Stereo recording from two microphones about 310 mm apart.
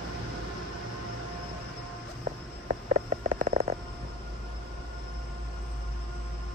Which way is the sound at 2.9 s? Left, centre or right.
Right.